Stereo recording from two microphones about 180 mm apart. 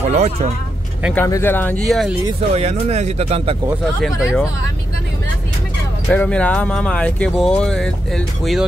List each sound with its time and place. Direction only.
0.1 s speech: 35° right (ahead or behind)
1.1 s speech: 15° left (ahead or behind)
2.5 s speech: 35° right (ahead or behind)
4.0 s speech: centre (ahead or behind)
6.0 s speech: 10° left (ahead or behind)